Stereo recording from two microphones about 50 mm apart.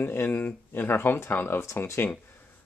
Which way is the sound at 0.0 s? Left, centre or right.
Left.